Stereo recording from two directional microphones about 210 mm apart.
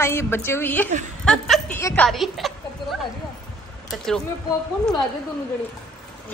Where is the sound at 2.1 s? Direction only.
Centre (ahead or behind).